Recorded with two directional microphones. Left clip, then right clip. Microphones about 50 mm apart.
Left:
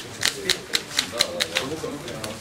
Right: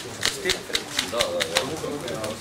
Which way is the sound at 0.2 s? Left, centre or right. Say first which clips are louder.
Left 1 dB; centre.